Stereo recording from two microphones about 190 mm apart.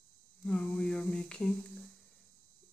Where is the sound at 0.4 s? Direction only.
5° left (ahead or behind).